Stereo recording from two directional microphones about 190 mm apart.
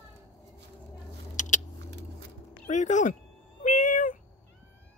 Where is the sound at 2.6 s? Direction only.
40° left (ahead or behind).